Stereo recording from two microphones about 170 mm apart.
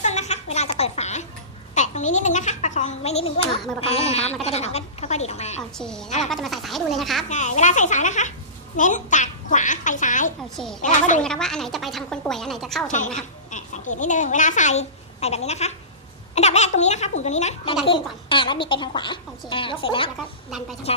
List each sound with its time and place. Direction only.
0.0 s a sound: 40° left (ahead or behind)
1.8 s a child's voice: 45° left (ahead or behind)
5.6 s speech: 5° left (ahead or behind)
7.2 s speech: 45° left (ahead or behind)
10.5 s speech: 5° left (ahead or behind)
10.8 s speech: 45° left (ahead or behind)
11.2 s speech: 5° left (ahead or behind)
13.5 s a woman's voice: 45° left (ahead or behind)
17.8 s a woman's voice: 30° left (ahead or behind)